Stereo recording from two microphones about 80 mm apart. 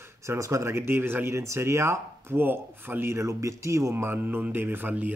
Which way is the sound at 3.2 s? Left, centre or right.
Right.